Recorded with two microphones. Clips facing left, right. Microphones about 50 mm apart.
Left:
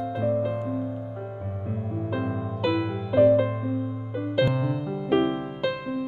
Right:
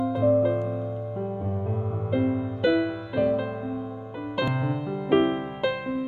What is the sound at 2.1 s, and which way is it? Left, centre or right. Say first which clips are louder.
Music: right 7 dB; centre.